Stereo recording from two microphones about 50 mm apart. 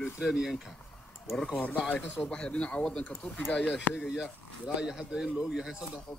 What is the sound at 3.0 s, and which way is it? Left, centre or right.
Speech, left.